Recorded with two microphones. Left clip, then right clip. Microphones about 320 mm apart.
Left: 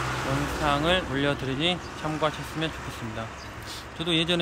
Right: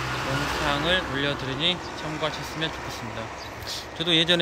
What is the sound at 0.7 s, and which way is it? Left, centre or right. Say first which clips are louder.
Speech: left 1 dB; centre.